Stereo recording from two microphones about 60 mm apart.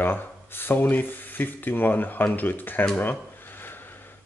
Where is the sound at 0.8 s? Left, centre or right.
Left.